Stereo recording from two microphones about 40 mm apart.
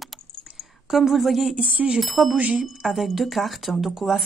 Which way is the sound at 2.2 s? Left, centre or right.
Right.